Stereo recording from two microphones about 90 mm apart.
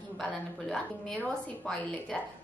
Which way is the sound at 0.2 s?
Centre (ahead or behind).